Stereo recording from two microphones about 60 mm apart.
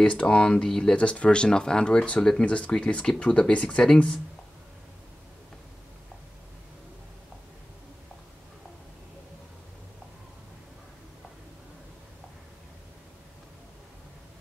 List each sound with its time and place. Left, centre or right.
0.0 s speech: centre